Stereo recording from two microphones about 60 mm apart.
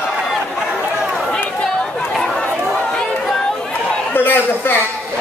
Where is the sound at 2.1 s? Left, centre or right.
Centre.